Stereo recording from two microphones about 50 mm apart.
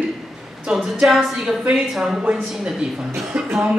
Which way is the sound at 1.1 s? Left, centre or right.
Centre.